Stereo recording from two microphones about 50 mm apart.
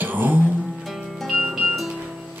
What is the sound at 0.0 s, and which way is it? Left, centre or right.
Music, right.